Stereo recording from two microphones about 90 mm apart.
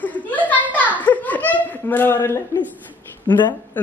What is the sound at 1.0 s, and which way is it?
Laughter, 20° left (ahead or behind).